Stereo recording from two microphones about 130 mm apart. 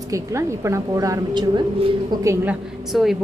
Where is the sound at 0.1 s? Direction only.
20° right (ahead or behind).